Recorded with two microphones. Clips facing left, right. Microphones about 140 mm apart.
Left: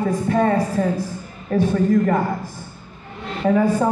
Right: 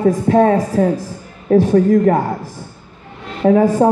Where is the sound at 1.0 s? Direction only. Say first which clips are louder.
Left 2 dB; 80° right.